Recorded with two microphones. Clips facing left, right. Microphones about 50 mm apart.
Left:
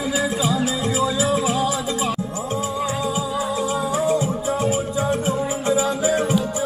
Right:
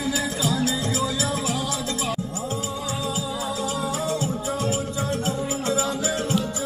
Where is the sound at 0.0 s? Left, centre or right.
Centre.